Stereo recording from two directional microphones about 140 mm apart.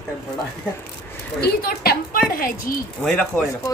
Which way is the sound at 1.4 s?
90° left.